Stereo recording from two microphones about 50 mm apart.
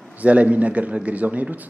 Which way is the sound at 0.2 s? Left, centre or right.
Right.